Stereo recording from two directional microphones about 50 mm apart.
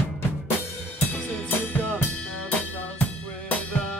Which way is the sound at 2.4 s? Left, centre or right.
Left.